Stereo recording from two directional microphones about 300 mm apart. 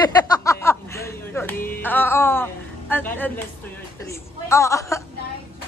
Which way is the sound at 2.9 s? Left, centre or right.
Centre.